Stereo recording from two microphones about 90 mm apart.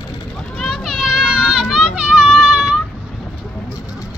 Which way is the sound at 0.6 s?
5° right (ahead or behind).